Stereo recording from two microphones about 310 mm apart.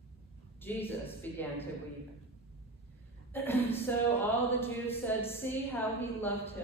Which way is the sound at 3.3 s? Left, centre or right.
Centre.